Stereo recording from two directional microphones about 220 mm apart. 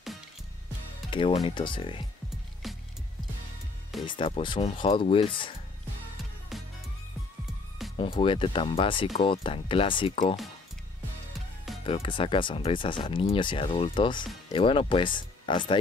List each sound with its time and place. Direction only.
1.1 s speech: 25° left (ahead or behind)
2.6 s music: centre (ahead or behind)
4.0 s speech: 20° left (ahead or behind)
6.5 s music: centre (ahead or behind)
8.0 s speech: 25° left (ahead or behind)
11.8 s speech: 25° left (ahead or behind)